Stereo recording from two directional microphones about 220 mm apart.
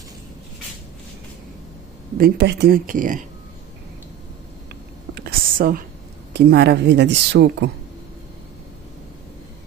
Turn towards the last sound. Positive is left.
turn(degrees=-50)  # may be behind; listen again after turning